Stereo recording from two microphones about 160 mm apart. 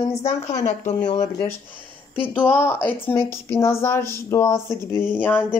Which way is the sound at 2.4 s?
15° left (ahead or behind).